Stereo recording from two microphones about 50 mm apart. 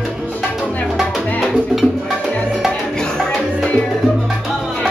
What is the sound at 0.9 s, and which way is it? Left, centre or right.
Music, centre.